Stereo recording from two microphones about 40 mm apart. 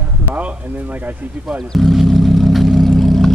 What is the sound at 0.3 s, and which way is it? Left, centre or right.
Speech, right.